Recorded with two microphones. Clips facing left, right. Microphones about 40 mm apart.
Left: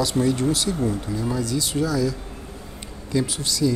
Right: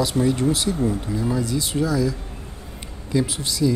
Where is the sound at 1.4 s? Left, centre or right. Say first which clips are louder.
Right 1 dB; right.